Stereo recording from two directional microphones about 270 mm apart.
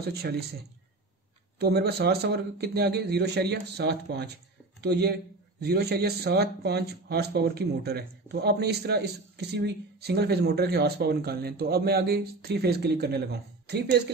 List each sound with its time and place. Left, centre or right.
0.0 s speech: right
1.6 s speech: right